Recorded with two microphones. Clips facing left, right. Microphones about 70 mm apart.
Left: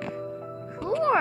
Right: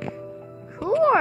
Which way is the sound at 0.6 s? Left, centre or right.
Centre.